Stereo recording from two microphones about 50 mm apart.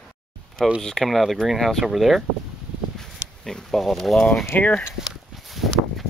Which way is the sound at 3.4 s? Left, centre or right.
Centre.